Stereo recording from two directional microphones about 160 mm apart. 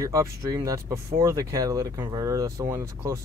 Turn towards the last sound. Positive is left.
turn(degrees=-20)  # may be behind; listen again after turning